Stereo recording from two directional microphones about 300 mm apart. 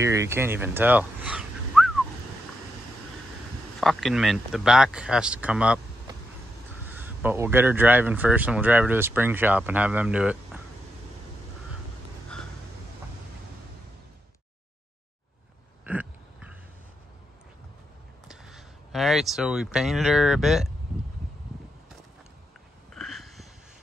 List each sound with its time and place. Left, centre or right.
0.0 s speech: centre
3.8 s speech: centre
6.9 s speech: centre
15.8 s a sound: centre
18.3 s speech: centre
22.9 s a sound: centre